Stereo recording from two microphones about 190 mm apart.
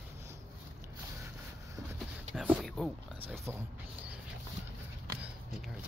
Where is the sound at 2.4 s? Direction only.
Centre (ahead or behind).